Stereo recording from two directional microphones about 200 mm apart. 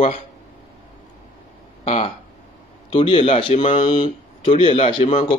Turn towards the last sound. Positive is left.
turn(degrees=25)  # may be behind; listen again after turning